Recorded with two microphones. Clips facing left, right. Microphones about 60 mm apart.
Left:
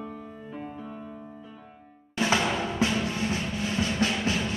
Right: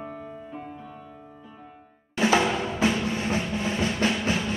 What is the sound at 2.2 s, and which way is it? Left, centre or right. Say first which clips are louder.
Timpani: right 3 dB; right.